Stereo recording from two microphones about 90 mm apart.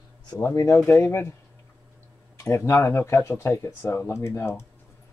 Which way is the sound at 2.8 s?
30° left (ahead or behind).